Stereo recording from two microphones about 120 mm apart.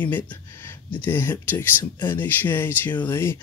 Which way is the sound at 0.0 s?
15° left (ahead or behind).